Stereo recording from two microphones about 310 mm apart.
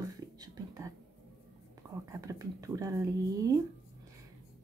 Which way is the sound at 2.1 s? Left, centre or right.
Centre.